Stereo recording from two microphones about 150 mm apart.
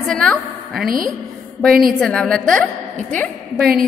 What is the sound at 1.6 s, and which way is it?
A woman's voice, centre (ahead or behind).